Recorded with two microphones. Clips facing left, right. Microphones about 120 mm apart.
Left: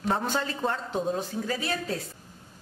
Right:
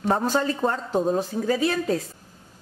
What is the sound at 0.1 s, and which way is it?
A man's voice, 40° right (ahead or behind).